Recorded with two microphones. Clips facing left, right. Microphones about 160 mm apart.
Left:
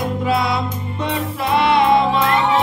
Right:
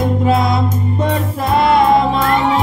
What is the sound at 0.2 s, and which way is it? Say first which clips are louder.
Music: right 2 dB; 45° right (ahead or behind).